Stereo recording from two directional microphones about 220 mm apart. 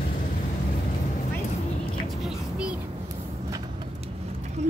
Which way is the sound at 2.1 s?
Centre (ahead or behind).